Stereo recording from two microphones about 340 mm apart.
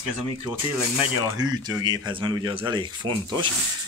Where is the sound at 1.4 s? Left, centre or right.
Centre.